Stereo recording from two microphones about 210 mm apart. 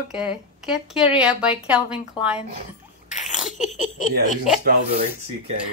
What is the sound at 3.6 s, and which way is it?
Speech, 35° left (ahead or behind).